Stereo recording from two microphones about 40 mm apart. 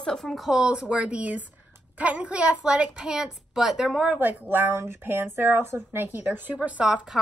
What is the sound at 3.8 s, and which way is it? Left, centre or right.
Speech, right.